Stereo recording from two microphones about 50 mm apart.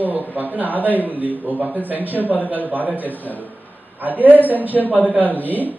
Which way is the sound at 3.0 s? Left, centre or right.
Left.